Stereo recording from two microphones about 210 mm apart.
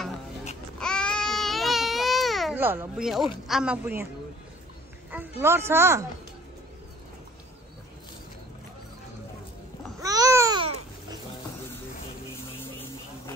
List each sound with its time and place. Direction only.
0.7 s baby cry: 5° left (ahead or behind)
3.4 s speech: 5° right (ahead or behind)
5.1 s speech: 10° right (ahead or behind)
9.9 s babbling: 15° right (ahead or behind)